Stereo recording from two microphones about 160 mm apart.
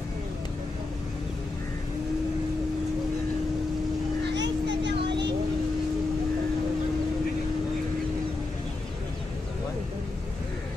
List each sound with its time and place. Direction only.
4.3 s vehicle: 90° right